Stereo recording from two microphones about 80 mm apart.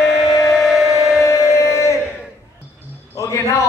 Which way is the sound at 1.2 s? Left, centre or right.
Left.